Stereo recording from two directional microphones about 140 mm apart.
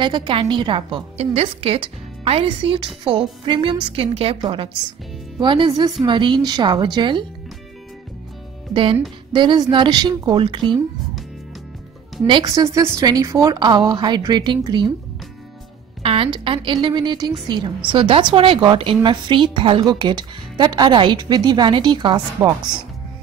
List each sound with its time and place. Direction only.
0.0 s speech: 35° right (ahead or behind)
9.3 s speech: 30° right (ahead or behind)
12.3 s speech: 35° right (ahead or behind)
12.6 s speech: 20° right (ahead or behind)
16.0 s music: 40° right (ahead or behind)
16.4 s speech: 35° right (ahead or behind)